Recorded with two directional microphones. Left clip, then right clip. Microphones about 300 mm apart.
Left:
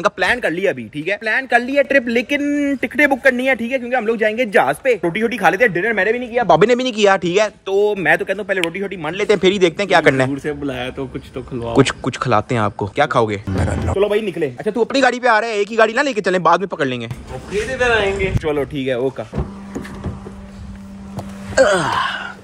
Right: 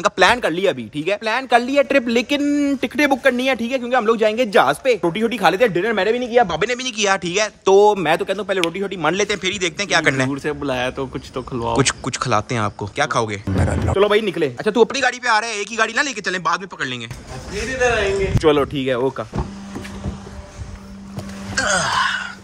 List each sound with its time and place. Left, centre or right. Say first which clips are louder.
0.4 s speech: left 1 dB; centre
6.4 s speech: left 7 dB; centre
7.6 s speech: right 3 dB; right
9.3 s speech: left 7 dB; centre
10.4 s speech: right 2 dB; centre
11.7 s speech: left 4 dB; centre
14.9 s speech: left 4 dB; centre
18.4 s speech: right 9 dB; right
18.7 s speech: even; centre
21.5 s wail: left 4 dB; centre